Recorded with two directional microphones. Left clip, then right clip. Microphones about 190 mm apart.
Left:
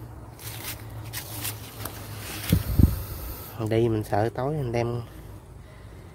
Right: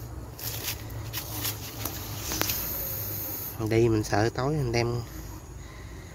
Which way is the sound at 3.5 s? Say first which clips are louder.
Even; 10° left (ahead or behind).